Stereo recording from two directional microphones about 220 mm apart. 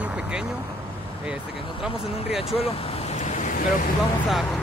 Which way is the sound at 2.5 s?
25° left (ahead or behind).